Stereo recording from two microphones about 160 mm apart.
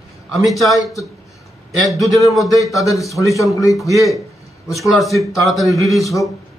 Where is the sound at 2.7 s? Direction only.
20° left (ahead or behind).